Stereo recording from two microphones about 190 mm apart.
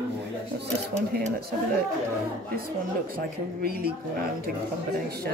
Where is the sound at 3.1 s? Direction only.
50° right (ahead or behind).